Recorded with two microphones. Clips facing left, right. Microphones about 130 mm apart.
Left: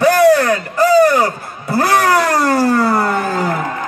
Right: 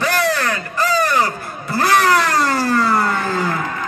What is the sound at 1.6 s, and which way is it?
Vehicle, 50° left (ahead or behind).